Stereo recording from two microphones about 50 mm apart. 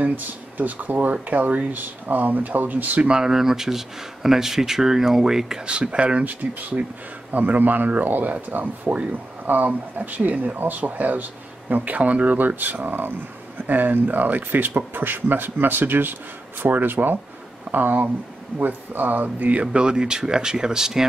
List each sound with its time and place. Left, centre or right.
0.0 s speech: right
3.0 s speech: centre
5.7 s speech: right